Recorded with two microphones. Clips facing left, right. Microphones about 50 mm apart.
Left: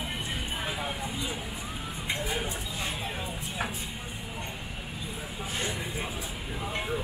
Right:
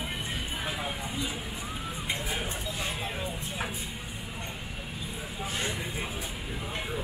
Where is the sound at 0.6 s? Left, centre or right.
Centre.